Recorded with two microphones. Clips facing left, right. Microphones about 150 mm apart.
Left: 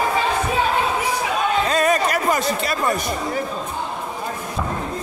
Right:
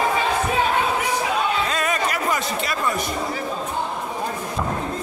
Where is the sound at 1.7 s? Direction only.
40° left (ahead or behind).